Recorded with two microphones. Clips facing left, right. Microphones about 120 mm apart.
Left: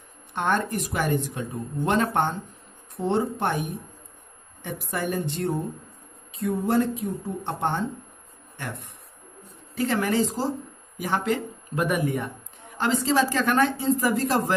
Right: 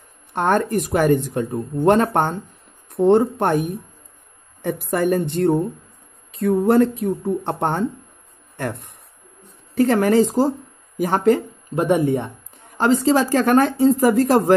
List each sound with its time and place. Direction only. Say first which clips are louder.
0.3 s a woman's voice: right 6 dB; 45° right (ahead or behind)
9.8 s a woman's voice: right 8 dB; 45° right (ahead or behind)
11.7 s speech: right 7 dB; 30° right (ahead or behind)
12.7 s a woman's voice: right 6 dB; 40° right (ahead or behind)